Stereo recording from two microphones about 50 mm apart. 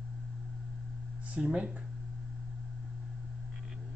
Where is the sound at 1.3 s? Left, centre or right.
Right.